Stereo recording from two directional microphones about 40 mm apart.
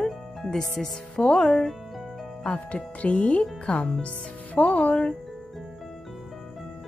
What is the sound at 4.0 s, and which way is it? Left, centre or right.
Speech, left.